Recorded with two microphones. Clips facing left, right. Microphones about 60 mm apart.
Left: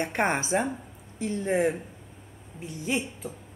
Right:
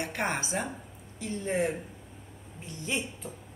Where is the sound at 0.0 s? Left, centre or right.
Left.